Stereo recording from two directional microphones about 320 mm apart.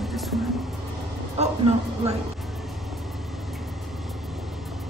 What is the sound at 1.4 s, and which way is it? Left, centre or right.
Speech, centre.